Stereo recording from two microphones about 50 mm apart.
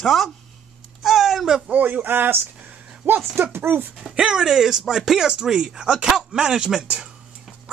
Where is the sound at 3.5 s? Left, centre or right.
Right.